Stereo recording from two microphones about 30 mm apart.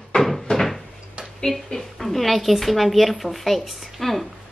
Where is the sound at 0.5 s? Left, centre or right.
Left.